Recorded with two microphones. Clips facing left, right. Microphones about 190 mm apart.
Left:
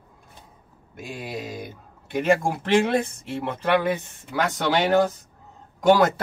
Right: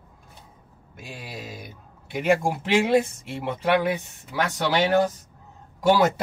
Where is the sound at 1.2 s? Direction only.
55° left (ahead or behind).